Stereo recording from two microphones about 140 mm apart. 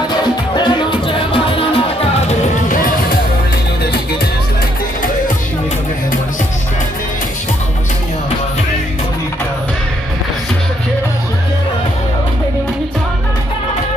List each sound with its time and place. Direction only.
0.6 s music: 35° left (ahead or behind)